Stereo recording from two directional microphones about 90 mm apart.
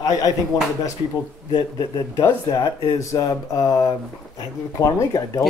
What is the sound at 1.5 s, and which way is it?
Speech, 50° left (ahead or behind).